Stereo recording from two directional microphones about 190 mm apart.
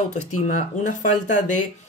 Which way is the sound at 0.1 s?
40° left (ahead or behind).